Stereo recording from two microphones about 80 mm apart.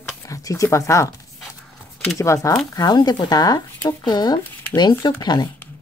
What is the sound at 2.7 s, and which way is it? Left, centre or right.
Speech, left.